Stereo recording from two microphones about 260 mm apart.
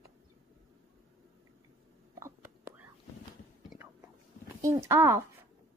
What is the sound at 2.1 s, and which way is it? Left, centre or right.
Whispering, centre.